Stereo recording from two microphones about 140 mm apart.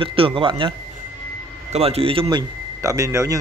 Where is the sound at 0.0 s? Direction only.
40° right (ahead or behind).